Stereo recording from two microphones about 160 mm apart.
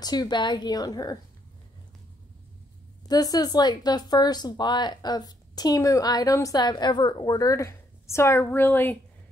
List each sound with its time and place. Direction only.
0.0 s a woman's voice: 25° left (ahead or behind)
3.1 s a woman's voice: 25° left (ahead or behind)